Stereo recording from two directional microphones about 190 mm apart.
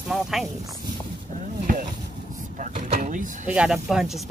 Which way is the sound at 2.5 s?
45° right (ahead or behind).